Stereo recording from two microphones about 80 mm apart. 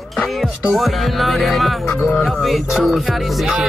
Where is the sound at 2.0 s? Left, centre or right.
Left.